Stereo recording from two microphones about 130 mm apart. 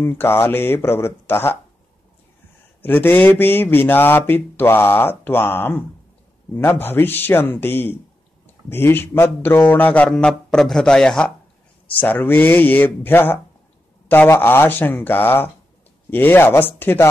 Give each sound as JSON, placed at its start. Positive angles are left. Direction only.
{"t": 0.0, "sound": "speech", "side_deg": 20}
{"t": 2.8, "sound": "speech", "side_deg": 15}